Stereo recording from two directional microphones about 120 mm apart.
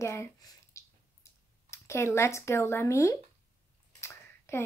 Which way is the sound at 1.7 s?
25° left (ahead or behind).